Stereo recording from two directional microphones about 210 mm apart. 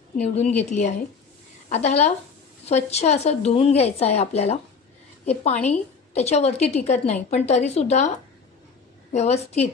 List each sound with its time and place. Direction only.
0.2 s a woman's voice: 30° left (ahead or behind)
9.1 s a woman's voice: 30° left (ahead or behind)